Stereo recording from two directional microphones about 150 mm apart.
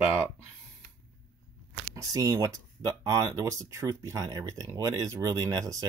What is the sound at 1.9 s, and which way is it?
Speech, 20° right (ahead or behind).